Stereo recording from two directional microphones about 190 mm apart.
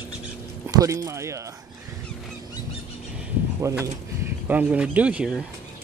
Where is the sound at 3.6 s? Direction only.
15° right (ahead or behind).